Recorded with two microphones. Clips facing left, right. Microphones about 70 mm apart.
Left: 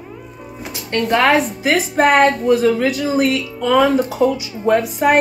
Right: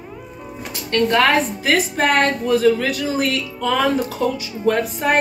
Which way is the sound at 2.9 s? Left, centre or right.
Centre.